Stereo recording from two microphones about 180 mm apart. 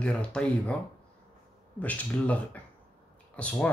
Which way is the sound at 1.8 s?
10° left (ahead or behind).